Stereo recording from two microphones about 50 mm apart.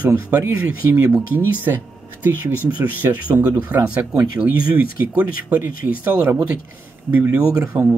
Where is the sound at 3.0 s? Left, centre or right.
Right.